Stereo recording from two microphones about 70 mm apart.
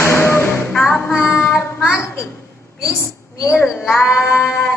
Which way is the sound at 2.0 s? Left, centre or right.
Left.